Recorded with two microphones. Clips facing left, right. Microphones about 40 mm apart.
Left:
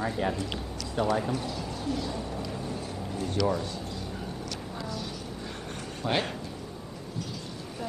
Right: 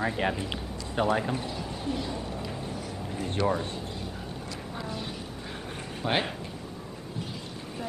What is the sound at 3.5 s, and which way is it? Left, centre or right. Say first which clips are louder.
Speech: right 1 dB; right.